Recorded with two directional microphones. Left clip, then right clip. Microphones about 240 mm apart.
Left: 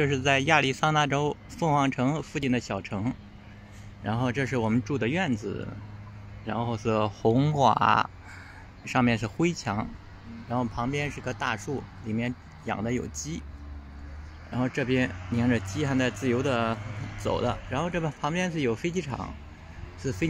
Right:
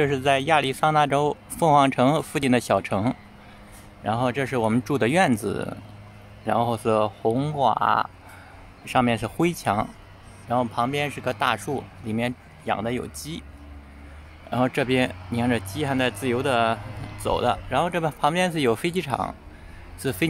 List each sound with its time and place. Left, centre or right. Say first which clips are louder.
0.0 s speech: right 3 dB; centre
14.5 s speech: right 6 dB; centre